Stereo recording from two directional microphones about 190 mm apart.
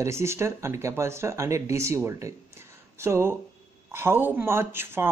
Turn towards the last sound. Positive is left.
turn(degrees=-10)  # may be behind; listen again after turning